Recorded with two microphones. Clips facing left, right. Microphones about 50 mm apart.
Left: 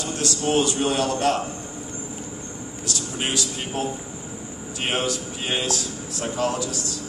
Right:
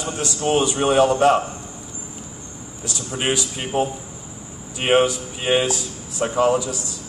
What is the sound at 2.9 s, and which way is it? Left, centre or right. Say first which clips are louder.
A man's voice: right 4 dB; centre.